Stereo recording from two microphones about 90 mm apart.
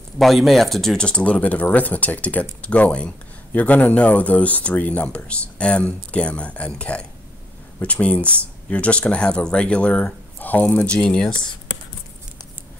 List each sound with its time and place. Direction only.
0.2 s speech: centre (ahead or behind)